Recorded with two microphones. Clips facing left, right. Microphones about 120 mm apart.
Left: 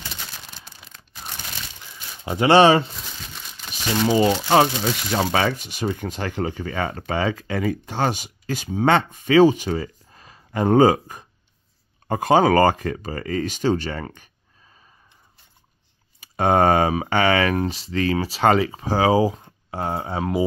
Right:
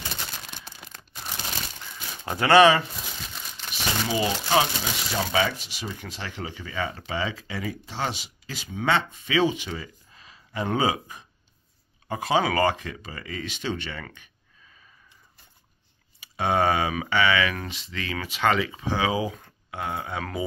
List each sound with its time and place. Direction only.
2.2 s speech: 20° left (ahead or behind)
4.0 s speech: 40° left (ahead or behind)
16.2 s speech: 45° left (ahead or behind)